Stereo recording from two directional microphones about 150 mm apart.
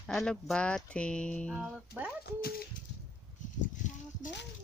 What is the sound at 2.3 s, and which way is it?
Speech, 90° left.